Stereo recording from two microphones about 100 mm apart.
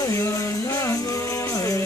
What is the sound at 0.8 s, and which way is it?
Music, 30° left (ahead or behind).